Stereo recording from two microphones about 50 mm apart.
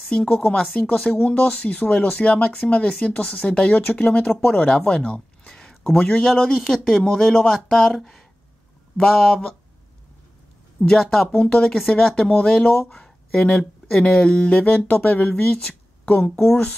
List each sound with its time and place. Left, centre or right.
0.1 s speech: centre
5.5 s a sound: centre
5.9 s speech: left
6.2 s speech: centre
10.8 s speech: centre
11.3 s speech: left